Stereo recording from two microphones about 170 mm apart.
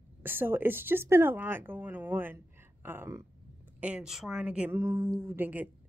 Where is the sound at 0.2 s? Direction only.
10° right (ahead or behind).